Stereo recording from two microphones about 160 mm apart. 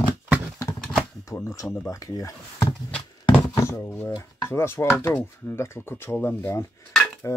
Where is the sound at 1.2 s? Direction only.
20° left (ahead or behind).